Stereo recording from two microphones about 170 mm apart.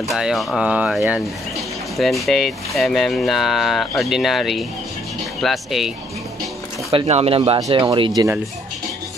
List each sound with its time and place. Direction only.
0.1 s speech: centre (ahead or behind)
6.9 s speech: 35° right (ahead or behind)